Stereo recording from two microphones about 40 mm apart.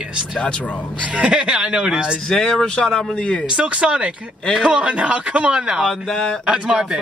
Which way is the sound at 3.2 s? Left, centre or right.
Left.